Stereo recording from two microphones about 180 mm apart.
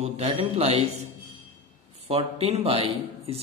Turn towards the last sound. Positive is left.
turn(degrees=-35)  # may be behind; listen again after turning